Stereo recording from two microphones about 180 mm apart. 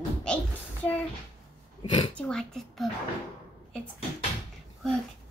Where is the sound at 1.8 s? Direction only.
30° left (ahead or behind).